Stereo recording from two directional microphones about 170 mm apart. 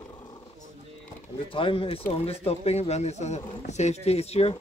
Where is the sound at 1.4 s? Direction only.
30° left (ahead or behind).